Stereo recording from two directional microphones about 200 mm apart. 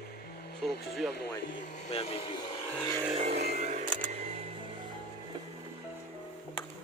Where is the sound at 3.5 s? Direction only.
35° right (ahead or behind).